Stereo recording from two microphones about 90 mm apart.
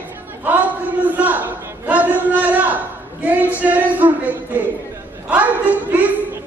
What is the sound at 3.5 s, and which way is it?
Music, 15° right (ahead or behind).